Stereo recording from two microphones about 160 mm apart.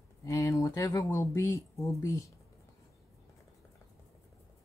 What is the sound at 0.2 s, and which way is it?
Speech, 20° left (ahead or behind).